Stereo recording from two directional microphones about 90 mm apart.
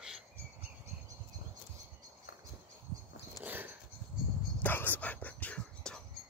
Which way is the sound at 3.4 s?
20° right (ahead or behind).